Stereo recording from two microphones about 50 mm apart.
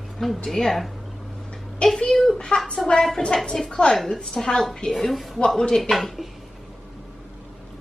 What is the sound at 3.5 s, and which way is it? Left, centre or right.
A woman's voice, centre.